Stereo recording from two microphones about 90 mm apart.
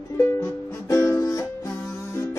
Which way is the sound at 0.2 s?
30° left (ahead or behind).